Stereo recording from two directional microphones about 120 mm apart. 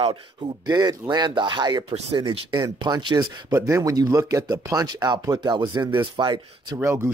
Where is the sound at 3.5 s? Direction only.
25° right (ahead or behind).